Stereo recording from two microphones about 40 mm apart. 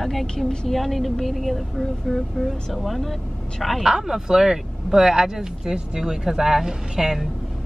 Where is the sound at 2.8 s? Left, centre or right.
Centre.